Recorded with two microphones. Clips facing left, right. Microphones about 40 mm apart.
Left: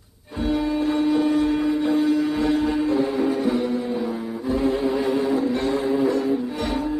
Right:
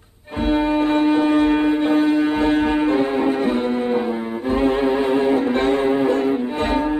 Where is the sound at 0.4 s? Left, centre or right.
Right.